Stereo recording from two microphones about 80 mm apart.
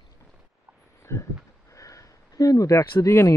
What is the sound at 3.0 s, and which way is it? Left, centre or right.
Speech, left.